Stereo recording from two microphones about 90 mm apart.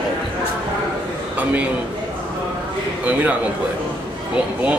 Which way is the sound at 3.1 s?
20° right (ahead or behind).